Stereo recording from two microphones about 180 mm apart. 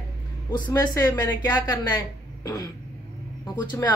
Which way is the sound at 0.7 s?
15° left (ahead or behind).